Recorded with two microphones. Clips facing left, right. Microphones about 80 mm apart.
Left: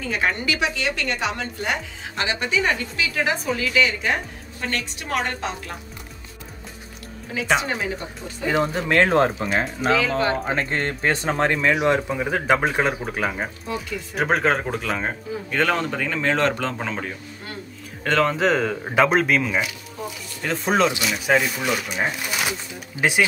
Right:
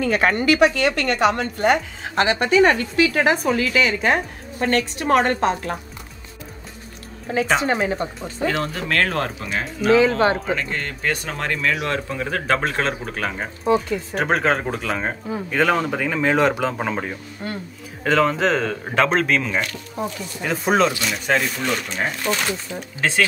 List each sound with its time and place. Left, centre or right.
0.0 s a woman's voice: right
7.6 s a woman's voice: right
8.5 s speech: centre
9.9 s speech: right
10.4 s speech: left; by 17.2 s centre
18.0 s speech: centre
20.4 s speech: centre